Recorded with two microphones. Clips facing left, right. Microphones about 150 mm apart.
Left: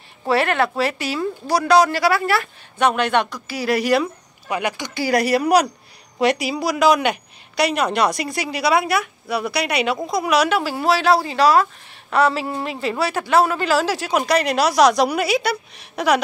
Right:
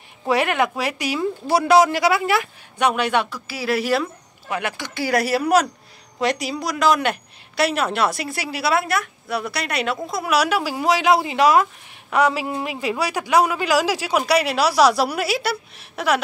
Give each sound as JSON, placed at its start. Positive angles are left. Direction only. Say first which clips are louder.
{"t": 0.3, "sound": "a man's voice", "louder": "left 1 dB", "side_deg": -15}